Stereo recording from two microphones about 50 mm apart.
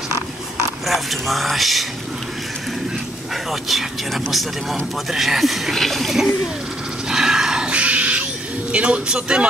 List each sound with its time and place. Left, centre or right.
0.8 s speech: centre
3.6 s speech: centre
7.1 s a sound: centre; by 8.2 s right
8.7 s a man's voice: right